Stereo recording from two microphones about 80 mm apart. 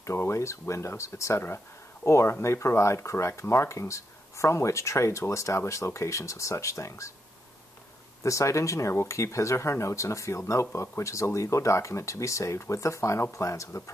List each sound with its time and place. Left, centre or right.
0.0 s speech: left
8.2 s speech: left